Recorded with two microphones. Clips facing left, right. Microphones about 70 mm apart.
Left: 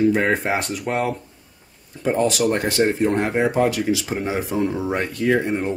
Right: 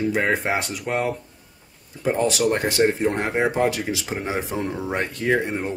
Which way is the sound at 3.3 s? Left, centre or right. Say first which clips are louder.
Left 2 dB; right.